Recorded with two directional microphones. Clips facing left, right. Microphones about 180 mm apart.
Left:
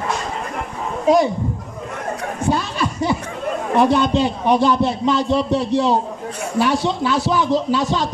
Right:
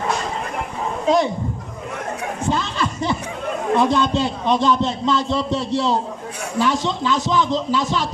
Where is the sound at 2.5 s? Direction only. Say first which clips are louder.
Left 2 dB; 10° left (ahead or behind).